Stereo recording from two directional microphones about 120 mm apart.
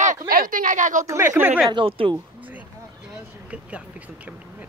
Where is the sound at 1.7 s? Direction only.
45° right (ahead or behind).